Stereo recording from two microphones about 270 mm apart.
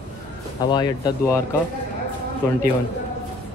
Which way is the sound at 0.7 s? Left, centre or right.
Centre.